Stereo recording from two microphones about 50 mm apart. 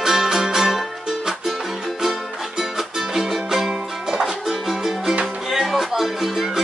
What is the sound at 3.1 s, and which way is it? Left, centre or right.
Music, centre.